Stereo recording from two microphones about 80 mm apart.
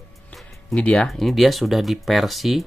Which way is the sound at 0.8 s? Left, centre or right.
Centre.